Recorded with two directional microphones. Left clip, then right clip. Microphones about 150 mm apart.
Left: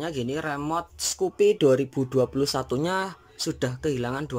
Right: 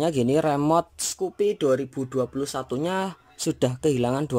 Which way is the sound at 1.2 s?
Centre (ahead or behind).